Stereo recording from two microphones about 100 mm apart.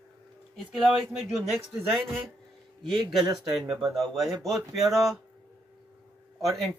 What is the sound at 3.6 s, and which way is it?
Speech, 45° right (ahead or behind).